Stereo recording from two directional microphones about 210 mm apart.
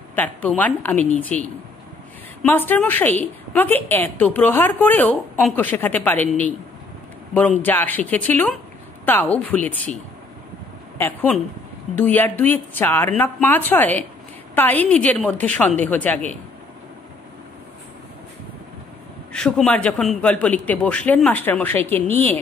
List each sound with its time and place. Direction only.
0.1 s a woman's voice: 10° left (ahead or behind)
11.0 s a woman's voice: 10° left (ahead or behind)
19.3 s a woman's voice: 5° left (ahead or behind)